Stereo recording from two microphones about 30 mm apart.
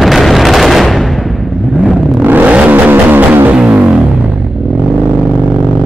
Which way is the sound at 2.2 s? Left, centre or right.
Right.